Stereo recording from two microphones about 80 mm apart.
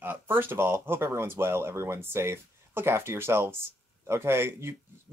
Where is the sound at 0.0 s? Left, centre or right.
Right.